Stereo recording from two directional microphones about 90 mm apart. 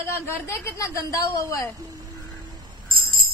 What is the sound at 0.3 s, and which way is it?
A woman's voice, 25° left (ahead or behind).